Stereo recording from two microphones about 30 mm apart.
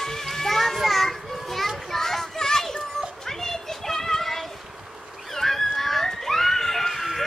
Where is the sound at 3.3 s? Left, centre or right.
Centre.